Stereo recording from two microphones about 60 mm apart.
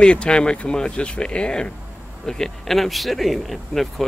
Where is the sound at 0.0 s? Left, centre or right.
Centre.